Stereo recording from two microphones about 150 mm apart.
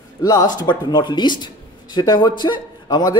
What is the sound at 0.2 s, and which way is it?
A man's voice, 25° left (ahead or behind).